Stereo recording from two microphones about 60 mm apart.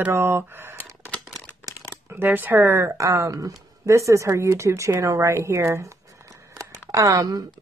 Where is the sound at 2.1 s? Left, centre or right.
Right.